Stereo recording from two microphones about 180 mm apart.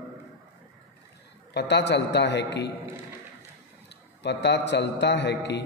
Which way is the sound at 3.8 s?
70° left (ahead or behind).